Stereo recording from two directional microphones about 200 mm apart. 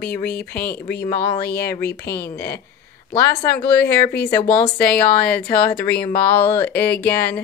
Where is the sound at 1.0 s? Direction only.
10° left (ahead or behind).